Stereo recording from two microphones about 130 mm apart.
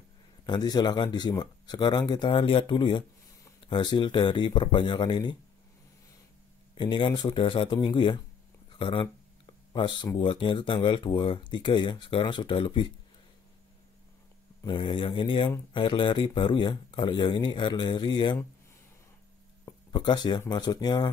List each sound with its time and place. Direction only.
0.5 s speech: 30° left (ahead or behind)
6.7 s speech: 40° left (ahead or behind)
14.7 s speech: 40° left (ahead or behind)
19.9 s speech: 35° left (ahead or behind)